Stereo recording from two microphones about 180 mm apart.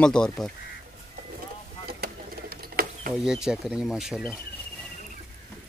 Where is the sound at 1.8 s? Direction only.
60° right (ahead or behind).